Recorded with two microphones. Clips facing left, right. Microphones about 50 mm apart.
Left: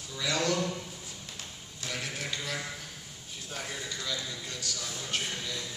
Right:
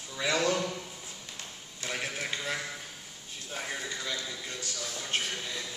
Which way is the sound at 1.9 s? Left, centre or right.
Right.